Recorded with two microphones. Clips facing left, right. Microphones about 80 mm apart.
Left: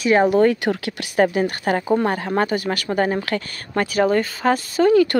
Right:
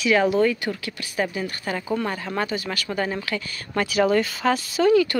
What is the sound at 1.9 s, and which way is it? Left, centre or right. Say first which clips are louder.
Speech: left 5 dB; left.